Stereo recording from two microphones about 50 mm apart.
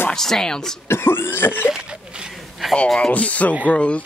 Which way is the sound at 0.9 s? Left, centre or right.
Left.